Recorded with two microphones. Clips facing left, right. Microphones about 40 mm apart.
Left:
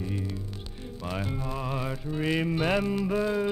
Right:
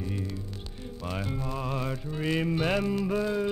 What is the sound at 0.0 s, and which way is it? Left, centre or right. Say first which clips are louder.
Music: left 1 dB; centre.